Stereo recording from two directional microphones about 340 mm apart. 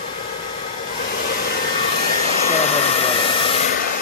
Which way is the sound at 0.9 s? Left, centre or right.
Left.